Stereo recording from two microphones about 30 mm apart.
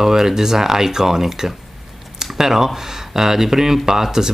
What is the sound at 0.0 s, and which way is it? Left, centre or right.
Speech, centre.